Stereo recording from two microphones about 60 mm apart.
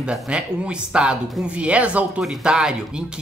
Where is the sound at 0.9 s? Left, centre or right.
Centre.